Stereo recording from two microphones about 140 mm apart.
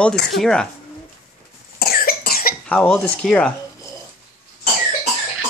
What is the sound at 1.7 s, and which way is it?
Cough, 90° left.